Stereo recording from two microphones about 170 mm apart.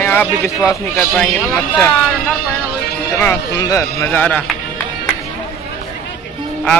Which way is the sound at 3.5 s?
20° left (ahead or behind).